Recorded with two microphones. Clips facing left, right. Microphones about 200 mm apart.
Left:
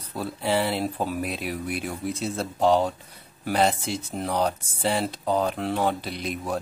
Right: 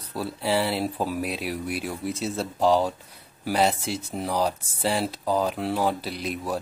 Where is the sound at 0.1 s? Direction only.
Centre (ahead or behind).